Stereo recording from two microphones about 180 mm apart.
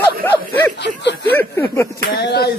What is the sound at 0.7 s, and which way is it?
Speech, 70° left (ahead or behind).